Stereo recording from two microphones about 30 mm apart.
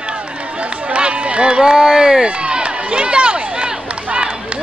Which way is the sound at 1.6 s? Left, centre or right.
Centre.